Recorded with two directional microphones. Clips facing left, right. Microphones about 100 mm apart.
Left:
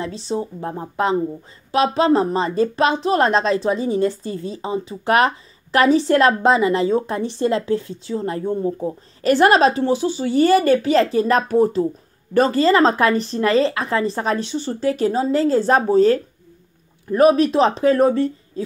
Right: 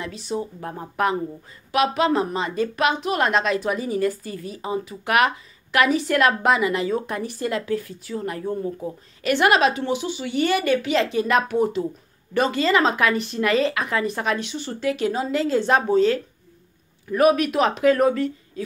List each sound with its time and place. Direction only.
0.0 s a woman's voice: 30° left (ahead or behind)